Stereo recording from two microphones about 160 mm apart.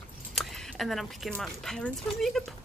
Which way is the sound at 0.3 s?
Centre (ahead or behind).